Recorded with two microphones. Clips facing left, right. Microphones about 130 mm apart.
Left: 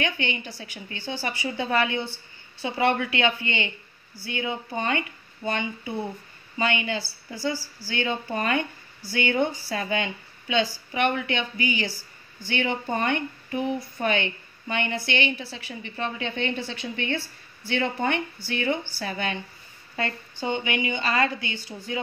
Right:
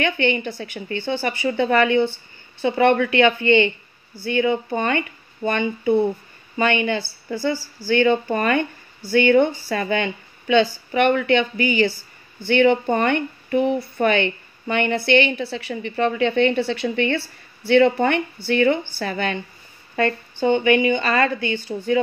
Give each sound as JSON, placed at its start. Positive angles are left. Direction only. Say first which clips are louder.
{"t": 0.0, "sound": "speech", "louder": "right 8 dB", "side_deg": -60}